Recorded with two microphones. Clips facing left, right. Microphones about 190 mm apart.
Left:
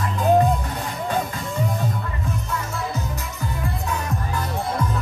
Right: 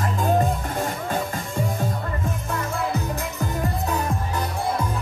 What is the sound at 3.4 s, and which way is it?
Music, 40° right (ahead or behind).